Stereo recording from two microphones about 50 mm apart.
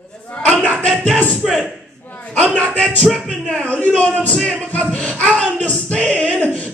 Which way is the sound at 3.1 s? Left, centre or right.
Centre.